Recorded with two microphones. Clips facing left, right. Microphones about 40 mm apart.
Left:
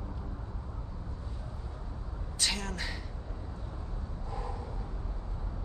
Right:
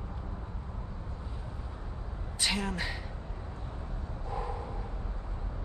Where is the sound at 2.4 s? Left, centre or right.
Centre.